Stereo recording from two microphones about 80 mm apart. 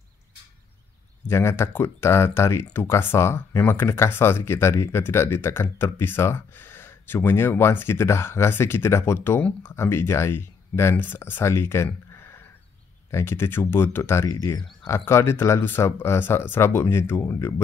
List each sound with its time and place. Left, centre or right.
1.2 s speech: left